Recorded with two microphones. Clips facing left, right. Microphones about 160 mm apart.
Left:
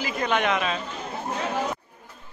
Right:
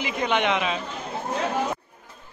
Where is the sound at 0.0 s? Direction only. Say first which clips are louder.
Right 1 dB; 20° right (ahead or behind).